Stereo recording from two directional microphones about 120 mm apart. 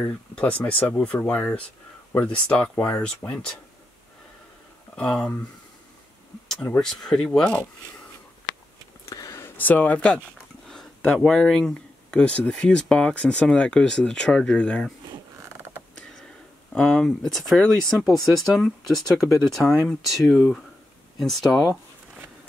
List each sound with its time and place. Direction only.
0.0 s speech: 10° left (ahead or behind)
4.9 s speech: 5° left (ahead or behind)
6.8 s speech: 5° left (ahead or behind)
9.1 s a sound: 25° left (ahead or behind)
9.6 s speech: 15° left (ahead or behind)
16.7 s speech: 5° left (ahead or behind)